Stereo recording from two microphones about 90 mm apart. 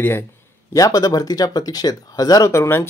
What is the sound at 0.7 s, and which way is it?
Speech, 40° left (ahead or behind).